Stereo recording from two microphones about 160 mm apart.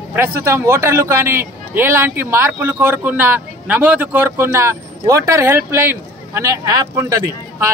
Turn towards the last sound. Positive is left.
turn(degrees=-20)  # may be behind; listen again after turning